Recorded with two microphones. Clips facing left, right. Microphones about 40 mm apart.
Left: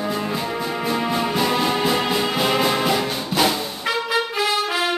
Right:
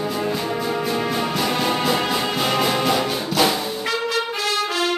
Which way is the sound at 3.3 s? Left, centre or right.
Left.